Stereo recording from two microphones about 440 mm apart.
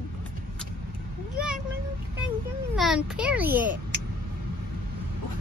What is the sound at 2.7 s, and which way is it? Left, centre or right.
A child's voice, centre.